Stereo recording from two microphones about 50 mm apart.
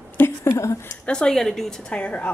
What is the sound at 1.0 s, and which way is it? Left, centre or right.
Speech, centre.